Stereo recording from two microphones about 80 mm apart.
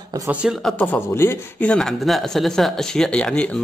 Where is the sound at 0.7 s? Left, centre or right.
Left.